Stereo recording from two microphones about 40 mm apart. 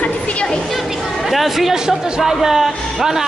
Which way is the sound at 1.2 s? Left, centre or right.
Centre.